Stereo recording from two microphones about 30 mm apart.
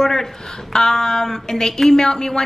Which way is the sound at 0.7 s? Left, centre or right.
Left.